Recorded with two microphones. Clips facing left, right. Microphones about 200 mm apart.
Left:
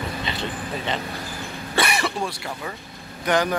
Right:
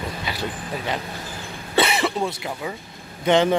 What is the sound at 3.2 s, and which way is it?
Speech, 25° right (ahead or behind).